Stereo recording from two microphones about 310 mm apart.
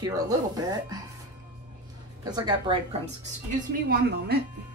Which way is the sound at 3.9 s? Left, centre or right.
Right.